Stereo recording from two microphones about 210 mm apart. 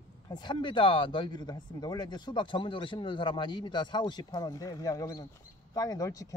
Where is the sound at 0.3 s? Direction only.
20° left (ahead or behind).